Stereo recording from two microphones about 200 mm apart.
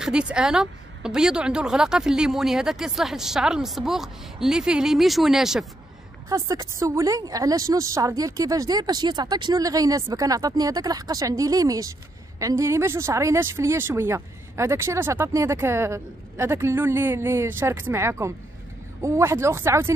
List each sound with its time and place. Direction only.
0.0 s speech: 5° right (ahead or behind)
6.2 s speech: 15° right (ahead or behind)